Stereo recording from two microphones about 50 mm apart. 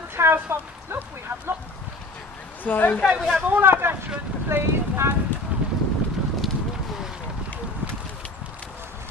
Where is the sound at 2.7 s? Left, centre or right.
Left.